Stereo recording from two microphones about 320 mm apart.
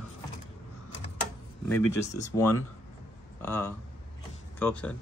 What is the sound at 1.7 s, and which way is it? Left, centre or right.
Speech, centre.